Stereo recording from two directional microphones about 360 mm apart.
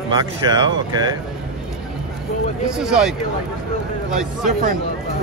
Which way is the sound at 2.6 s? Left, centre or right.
Centre.